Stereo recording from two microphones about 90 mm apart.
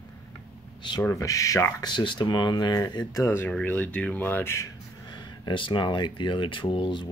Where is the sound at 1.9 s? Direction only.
60° left (ahead or behind); by 3.3 s 45° left (ahead or behind).